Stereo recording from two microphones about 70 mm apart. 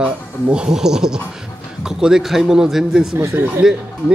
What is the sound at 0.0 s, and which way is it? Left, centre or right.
A man's voice, centre.